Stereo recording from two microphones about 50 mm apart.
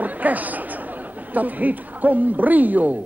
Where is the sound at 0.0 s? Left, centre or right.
Right.